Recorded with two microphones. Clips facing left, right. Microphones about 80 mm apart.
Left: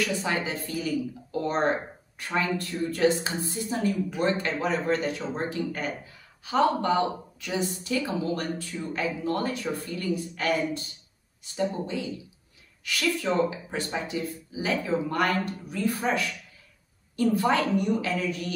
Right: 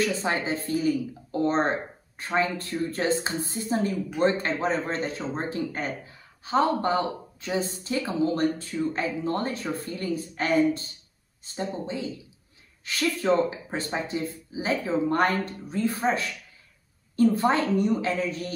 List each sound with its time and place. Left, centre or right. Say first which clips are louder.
0.0 s a woman's voice: right 2 dB; right